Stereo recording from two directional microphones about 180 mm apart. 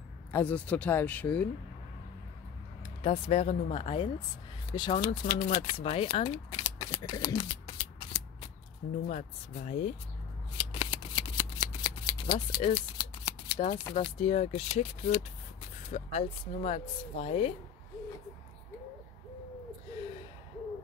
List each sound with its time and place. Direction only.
0.3 s speech: 10° left (ahead or behind)
2.8 s speech: 30° left (ahead or behind)
5.0 s speech: 50° left (ahead or behind)
5.8 s speech: 30° left (ahead or behind)
7.1 s shuffling cards: 25° left (ahead or behind)
9.0 s speech: 40° left (ahead or behind)
10.6 s shuffling cards: 30° left (ahead or behind)
13.9 s speech: 35° left (ahead or behind)